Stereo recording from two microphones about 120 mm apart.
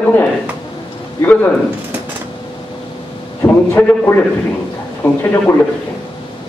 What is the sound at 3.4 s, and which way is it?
A man's voice, 20° left (ahead or behind).